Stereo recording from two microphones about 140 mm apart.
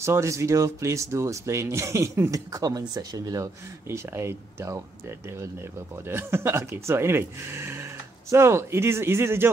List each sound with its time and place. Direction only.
0.0 s speech: 20° right (ahead or behind)